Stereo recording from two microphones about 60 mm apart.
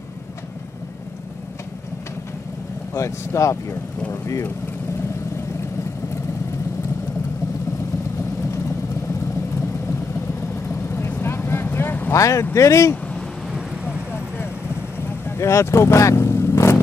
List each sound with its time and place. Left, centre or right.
2.9 s speech: left
10.7 s vehicle: left
12.1 s speech: left
15.2 s vehicle: left